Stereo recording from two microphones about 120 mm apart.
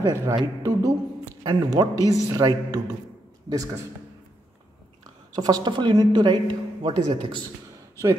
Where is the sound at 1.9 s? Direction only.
30° left (ahead or behind).